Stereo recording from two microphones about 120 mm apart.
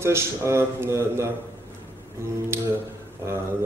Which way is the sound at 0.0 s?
20° right (ahead or behind).